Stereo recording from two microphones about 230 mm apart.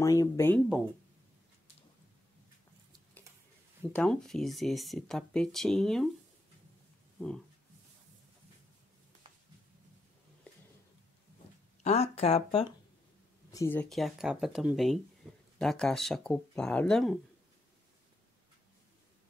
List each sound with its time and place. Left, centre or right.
0.0 s speech: centre
3.9 s speech: centre
11.8 s speech: left
13.5 s speech: centre
15.2 s a sound: centre
15.6 s speech: centre